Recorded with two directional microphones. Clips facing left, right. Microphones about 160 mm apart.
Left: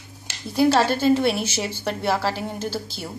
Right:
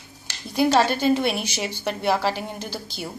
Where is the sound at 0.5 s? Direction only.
10° right (ahead or behind).